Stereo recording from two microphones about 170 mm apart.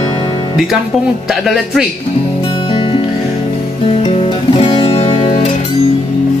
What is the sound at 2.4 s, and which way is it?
Music, 30° left (ahead or behind).